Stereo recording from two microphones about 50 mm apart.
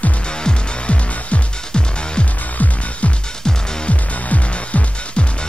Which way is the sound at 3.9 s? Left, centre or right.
Left.